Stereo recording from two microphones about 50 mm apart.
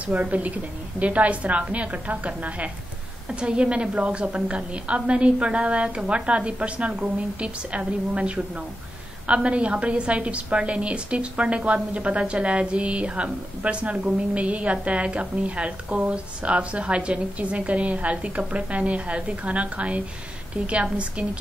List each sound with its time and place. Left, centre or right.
0.0 s a woman's voice: right
3.3 s a woman's voice: centre